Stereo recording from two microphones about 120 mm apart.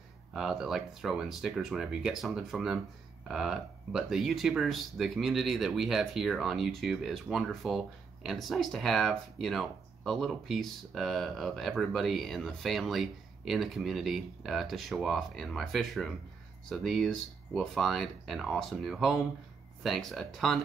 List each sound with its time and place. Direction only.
0.3 s speech: 5° right (ahead or behind)